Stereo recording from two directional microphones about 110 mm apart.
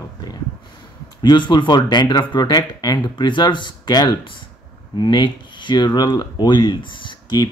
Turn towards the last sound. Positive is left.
turn(degrees=40)  # may be behind; listen again after turning